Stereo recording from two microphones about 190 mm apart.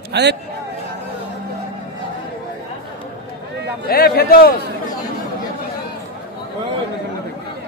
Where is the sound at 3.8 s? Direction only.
55° left (ahead or behind).